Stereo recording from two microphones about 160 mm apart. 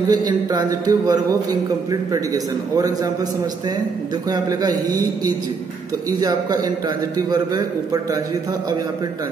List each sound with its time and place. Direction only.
0.1 s a man's voice: 25° right (ahead or behind)
4.3 s a man's voice: 25° right (ahead or behind)